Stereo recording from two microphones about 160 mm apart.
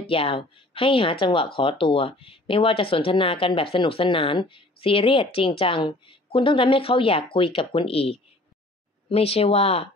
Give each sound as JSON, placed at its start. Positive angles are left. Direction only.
{"t": 0.1, "sound": "speech", "side_deg": 35}